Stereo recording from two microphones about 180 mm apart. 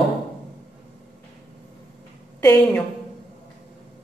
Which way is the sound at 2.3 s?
10° left (ahead or behind).